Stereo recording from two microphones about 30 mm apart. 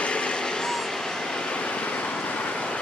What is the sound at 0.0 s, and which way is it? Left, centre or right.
Vehicle, left.